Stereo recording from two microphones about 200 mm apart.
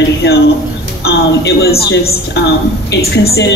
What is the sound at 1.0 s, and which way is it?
A woman's voice, 55° left (ahead or behind).